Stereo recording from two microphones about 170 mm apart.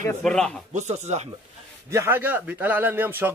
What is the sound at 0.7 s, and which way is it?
Speech, 40° right (ahead or behind).